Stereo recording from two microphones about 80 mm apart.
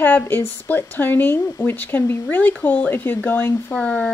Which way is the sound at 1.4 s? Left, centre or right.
Left.